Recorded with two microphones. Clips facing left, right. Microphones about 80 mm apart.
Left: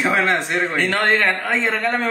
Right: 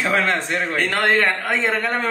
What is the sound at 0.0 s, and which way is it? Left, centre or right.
Speech, centre.